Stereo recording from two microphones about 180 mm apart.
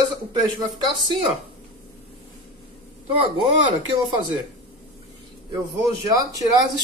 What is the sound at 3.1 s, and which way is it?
Speech, 30° right (ahead or behind).